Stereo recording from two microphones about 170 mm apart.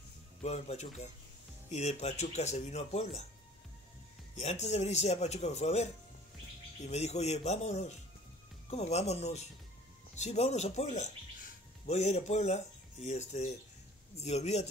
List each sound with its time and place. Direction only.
0.4 s speech: 40° left (ahead or behind)
4.4 s speech: 40° left (ahead or behind)